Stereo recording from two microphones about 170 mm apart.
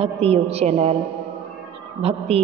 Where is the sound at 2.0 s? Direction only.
35° right (ahead or behind).